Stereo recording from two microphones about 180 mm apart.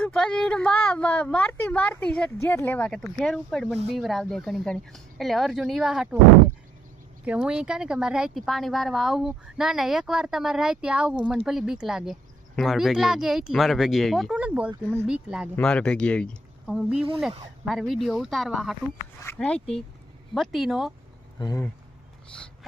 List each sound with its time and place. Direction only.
0.1 s a woman's voice: 5° left (ahead or behind)
7.2 s speech: 5° right (ahead or behind)
15.5 s speech: 5° left (ahead or behind)
16.6 s a woman's voice: 5° right (ahead or behind)
21.4 s speech: 20° left (ahead or behind)